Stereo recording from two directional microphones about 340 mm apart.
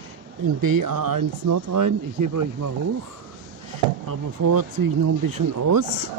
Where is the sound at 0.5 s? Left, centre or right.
Right.